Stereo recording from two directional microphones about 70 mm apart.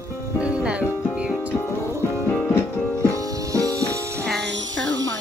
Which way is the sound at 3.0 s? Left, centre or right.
Right.